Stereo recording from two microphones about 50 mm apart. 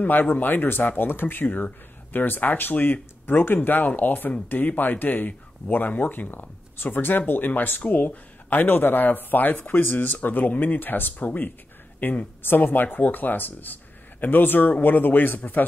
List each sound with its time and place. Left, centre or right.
0.0 s speech: left
9.8 s speech: left